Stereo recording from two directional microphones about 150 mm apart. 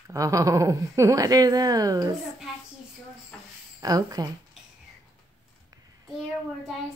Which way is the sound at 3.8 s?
25° right (ahead or behind).